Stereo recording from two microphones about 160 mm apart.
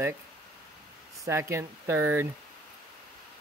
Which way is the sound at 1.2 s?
15° right (ahead or behind).